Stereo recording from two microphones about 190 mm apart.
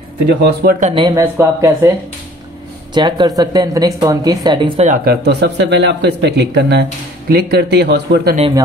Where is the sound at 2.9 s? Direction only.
25° right (ahead or behind).